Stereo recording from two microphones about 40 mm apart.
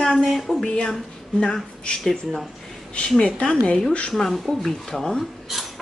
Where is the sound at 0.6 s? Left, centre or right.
Centre.